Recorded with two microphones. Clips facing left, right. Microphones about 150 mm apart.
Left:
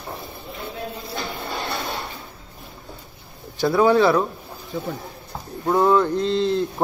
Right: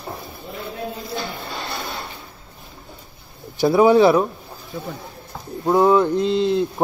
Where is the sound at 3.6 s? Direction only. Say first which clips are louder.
Right 3 dB; 15° right (ahead or behind).